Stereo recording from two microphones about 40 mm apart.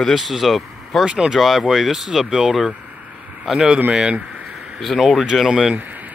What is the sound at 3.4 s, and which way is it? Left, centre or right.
Speech, centre.